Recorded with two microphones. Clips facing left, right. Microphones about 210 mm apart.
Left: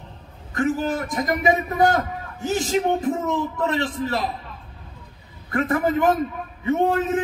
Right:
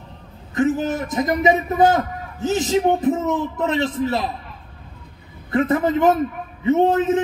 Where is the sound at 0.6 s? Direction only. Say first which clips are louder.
Right 3 dB; 20° right (ahead or behind).